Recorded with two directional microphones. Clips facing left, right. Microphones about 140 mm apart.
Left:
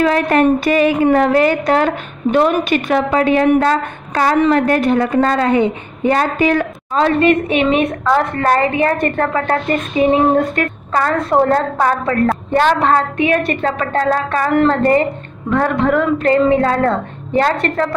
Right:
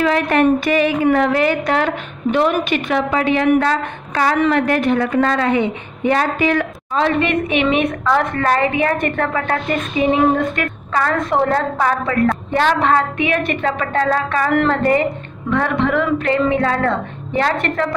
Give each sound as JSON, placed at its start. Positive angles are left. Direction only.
{"t": 0.0, "sound": "a woman's voice", "side_deg": 40}